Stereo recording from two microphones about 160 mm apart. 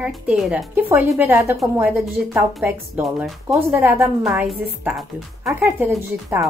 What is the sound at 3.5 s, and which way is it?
Speech, 15° right (ahead or behind).